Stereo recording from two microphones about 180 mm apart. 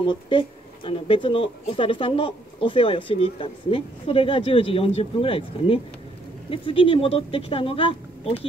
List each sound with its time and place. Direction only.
0.0 s speech: 30° left (ahead or behind)